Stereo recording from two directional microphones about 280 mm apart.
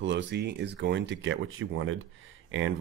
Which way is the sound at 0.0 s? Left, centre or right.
Right.